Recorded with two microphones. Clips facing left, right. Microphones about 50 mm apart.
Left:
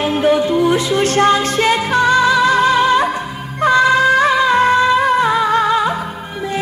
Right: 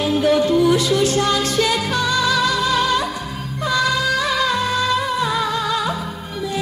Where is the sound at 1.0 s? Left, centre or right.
Left.